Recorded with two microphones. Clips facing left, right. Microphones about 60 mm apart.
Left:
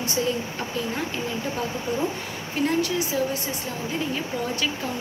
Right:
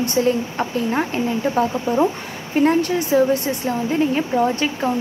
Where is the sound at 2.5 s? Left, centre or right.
Right.